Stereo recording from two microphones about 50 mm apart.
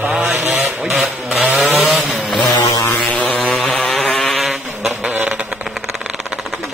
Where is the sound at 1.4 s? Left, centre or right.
Right.